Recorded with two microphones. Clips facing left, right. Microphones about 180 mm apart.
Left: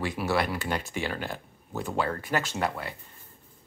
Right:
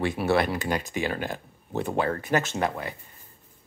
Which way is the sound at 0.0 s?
25° right (ahead or behind).